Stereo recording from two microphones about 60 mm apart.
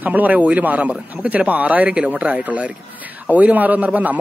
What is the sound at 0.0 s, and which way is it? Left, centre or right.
Speech, right.